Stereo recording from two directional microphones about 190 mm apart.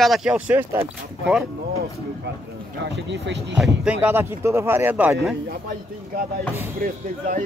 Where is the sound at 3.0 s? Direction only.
65° right (ahead or behind).